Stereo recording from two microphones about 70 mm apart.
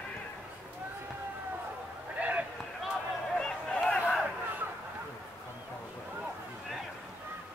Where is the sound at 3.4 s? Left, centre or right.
Centre.